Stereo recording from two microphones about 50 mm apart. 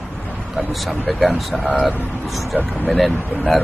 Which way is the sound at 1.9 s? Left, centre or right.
Left.